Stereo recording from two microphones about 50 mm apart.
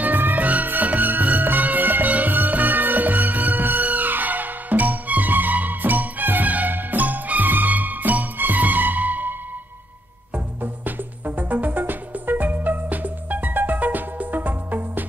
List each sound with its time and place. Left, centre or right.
0.0 s music: right
10.3 s music: right